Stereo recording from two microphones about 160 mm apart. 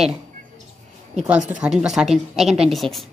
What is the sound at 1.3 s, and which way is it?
A woman's voice, 5° right (ahead or behind).